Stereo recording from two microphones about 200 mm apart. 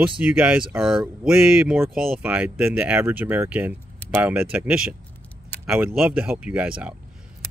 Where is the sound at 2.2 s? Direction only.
5° right (ahead or behind).